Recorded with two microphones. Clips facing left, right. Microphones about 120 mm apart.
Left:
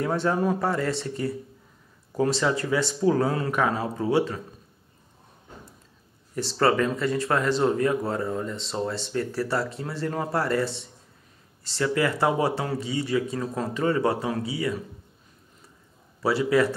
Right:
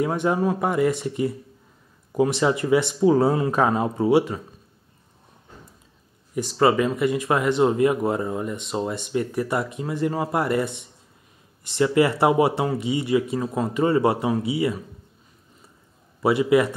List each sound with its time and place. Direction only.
0.0 s speech: 15° right (ahead or behind)
6.3 s speech: 10° right (ahead or behind)
16.2 s speech: 20° right (ahead or behind)